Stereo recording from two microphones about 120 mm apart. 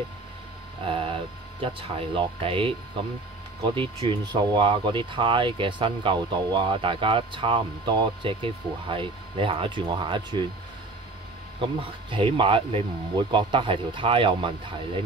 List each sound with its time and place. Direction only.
0.8 s speech: 50° right (ahead or behind)
3.7 s speech: 45° right (ahead or behind)
11.6 s speech: 45° right (ahead or behind)